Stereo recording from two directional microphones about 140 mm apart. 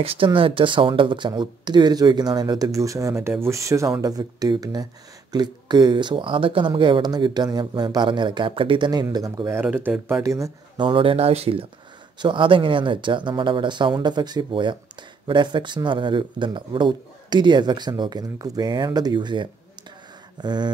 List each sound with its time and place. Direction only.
0.0 s speech: 40° right (ahead or behind)
9.8 s speech: 15° right (ahead or behind)
10.8 s speech: 35° right (ahead or behind)